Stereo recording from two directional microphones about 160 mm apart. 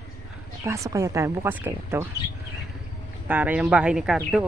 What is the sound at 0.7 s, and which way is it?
Speech, 20° right (ahead or behind).